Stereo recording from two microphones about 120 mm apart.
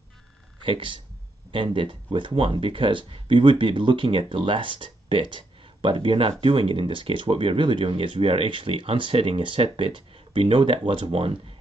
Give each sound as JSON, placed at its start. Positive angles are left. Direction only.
{"t": 0.7, "sound": "speech", "side_deg": -45}